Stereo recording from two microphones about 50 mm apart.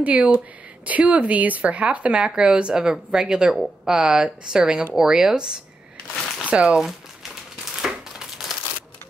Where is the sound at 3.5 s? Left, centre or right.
Centre.